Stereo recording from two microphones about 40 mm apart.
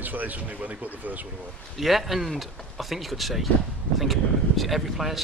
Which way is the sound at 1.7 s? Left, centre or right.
Centre.